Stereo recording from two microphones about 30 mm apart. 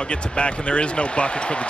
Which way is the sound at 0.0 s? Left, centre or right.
Left.